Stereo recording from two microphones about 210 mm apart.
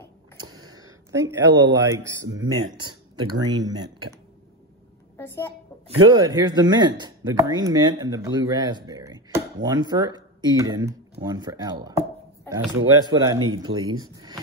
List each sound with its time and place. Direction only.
0.4 s a sound: 85° right
0.7 s a sound: 15° right (ahead or behind)
1.9 s speech: 15° right (ahead or behind)
5.1 s a woman's voice: 15° left (ahead or behind)
6.0 s speech: 20° right (ahead or behind)
13.0 s speech: 15° right (ahead or behind)